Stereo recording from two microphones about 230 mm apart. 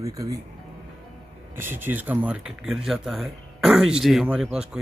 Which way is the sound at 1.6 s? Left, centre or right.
Centre.